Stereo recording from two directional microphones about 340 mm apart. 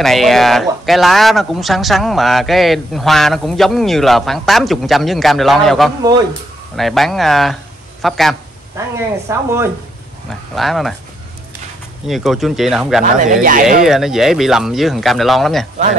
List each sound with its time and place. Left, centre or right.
0.0 s speech: centre
8.0 s a sound: centre
9.3 s speech: centre
10.5 s speech: centre
12.1 s speech: centre
13.0 s speech: right
13.8 s speech: centre